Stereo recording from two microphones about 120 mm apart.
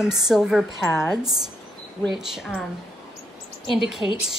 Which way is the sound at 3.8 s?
5° right (ahead or behind).